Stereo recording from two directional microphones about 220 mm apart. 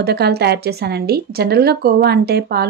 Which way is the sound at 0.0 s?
45° right (ahead or behind).